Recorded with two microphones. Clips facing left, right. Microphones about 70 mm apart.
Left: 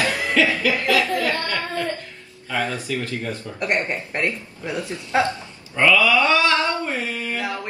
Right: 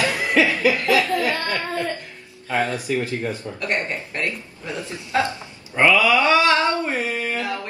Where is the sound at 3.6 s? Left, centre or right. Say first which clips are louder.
Left 3 dB; left.